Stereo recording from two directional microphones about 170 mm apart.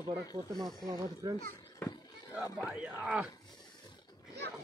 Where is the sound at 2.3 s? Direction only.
20° left (ahead or behind).